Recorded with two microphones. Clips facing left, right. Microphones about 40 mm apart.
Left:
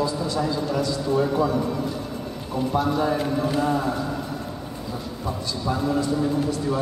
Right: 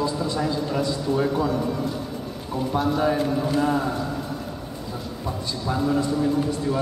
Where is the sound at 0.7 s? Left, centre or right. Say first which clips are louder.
Even; centre.